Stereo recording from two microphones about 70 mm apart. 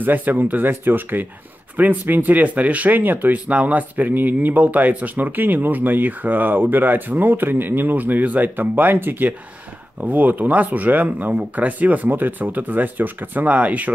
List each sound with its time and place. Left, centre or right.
0.0 s speech: right